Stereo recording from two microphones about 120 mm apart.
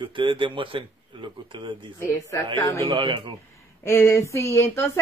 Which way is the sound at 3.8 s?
20° left (ahead or behind).